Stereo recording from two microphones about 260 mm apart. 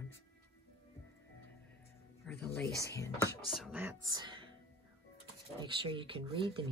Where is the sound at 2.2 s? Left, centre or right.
Centre.